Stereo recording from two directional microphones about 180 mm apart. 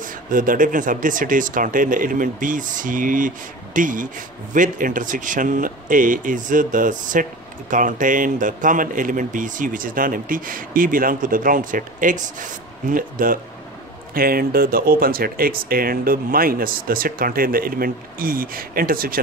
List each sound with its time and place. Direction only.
0.0 s speech: 50° right (ahead or behind)